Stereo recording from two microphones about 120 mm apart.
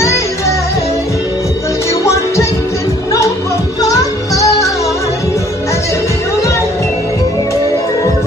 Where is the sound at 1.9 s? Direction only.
25° left (ahead or behind).